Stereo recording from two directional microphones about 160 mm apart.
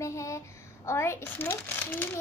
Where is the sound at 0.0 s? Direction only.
20° left (ahead or behind).